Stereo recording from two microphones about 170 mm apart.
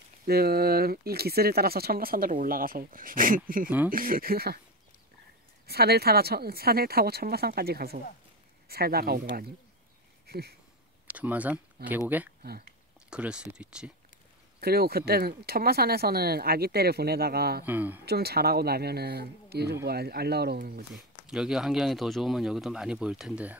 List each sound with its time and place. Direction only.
0.3 s speech: 65° right (ahead or behind)
5.7 s speech: 70° right (ahead or behind)
10.2 s a sound: 65° right (ahead or behind)
11.1 s speech: 10° right (ahead or behind)
13.1 s speech: 5° right (ahead or behind)
14.6 s speech: 65° right (ahead or behind)
17.6 s speech: 10° right (ahead or behind)
18.0 s speech: 70° right (ahead or behind)
20.9 s speech: 5° right (ahead or behind)